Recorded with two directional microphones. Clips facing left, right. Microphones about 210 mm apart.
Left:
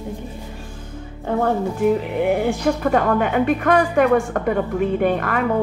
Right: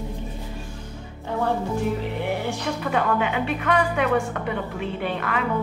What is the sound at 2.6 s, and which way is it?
A woman's voice, 45° left (ahead or behind).